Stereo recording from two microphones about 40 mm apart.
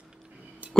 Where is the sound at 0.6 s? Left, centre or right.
Right.